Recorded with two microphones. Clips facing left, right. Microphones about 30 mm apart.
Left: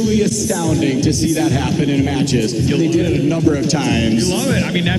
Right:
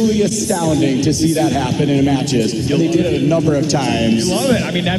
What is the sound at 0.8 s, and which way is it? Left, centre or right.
Speech, centre.